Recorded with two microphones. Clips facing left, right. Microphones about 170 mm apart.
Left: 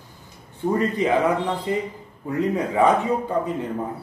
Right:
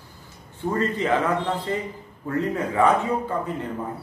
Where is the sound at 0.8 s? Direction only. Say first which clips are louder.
Left 2 dB; 15° left (ahead or behind).